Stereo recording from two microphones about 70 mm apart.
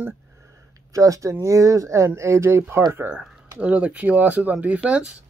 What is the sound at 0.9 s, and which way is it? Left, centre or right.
Speech, right.